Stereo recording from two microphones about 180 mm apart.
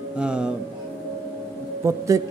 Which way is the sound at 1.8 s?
15° right (ahead or behind).